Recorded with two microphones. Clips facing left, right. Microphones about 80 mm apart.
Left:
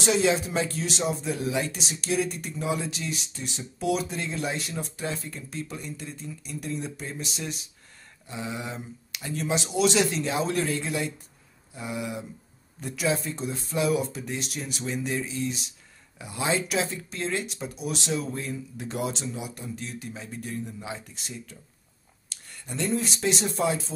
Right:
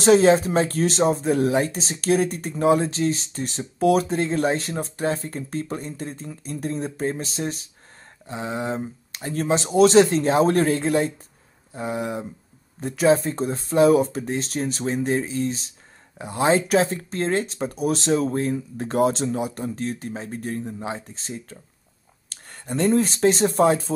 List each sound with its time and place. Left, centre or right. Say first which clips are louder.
0.0 s speech: right 9 dB; right
2.9 s speech: right 11 dB; right